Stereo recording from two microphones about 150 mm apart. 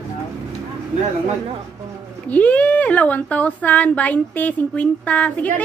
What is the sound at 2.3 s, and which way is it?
A woman's voice, 10° left (ahead or behind).